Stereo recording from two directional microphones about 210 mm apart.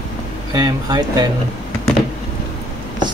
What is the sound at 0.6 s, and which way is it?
Speech, 20° right (ahead or behind).